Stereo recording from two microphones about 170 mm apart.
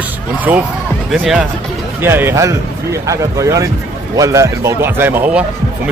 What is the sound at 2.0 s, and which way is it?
Speech, 15° right (ahead or behind).